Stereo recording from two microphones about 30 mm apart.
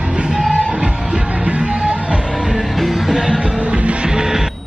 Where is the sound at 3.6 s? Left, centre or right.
Right.